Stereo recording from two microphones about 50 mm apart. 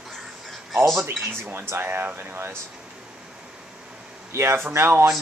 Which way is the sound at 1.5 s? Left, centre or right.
Right.